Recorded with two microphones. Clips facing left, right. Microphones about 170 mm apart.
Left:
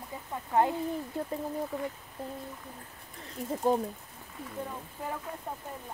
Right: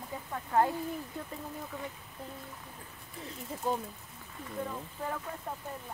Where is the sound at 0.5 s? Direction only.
20° left (ahead or behind).